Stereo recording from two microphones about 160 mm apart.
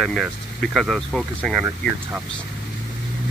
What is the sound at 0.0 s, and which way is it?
Speech, centre (ahead or behind).